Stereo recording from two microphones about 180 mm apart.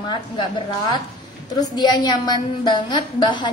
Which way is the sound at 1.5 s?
25° left (ahead or behind).